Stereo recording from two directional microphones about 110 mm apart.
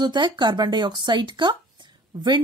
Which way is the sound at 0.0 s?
45° right (ahead or behind).